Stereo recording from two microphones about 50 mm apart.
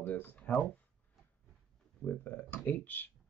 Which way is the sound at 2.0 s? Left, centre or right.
Left.